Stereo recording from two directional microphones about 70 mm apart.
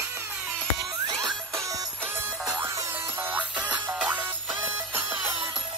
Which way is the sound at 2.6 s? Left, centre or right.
Right.